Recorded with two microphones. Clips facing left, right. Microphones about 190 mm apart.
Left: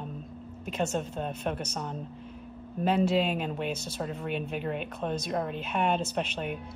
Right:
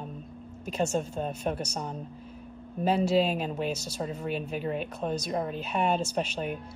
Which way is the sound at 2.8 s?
35° right (ahead or behind).